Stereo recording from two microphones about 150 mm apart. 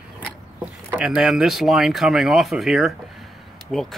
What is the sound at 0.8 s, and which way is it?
Speech, 5° right (ahead or behind).